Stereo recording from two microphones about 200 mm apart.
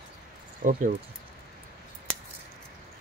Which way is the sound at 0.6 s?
40° right (ahead or behind).